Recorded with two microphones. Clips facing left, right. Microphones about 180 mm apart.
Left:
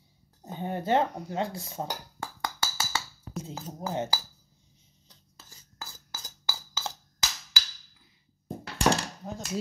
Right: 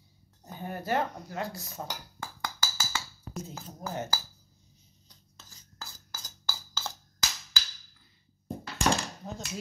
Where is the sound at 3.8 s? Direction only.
25° left (ahead or behind).